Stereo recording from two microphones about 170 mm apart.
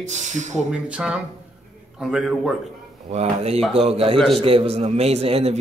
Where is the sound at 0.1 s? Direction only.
45° right (ahead or behind).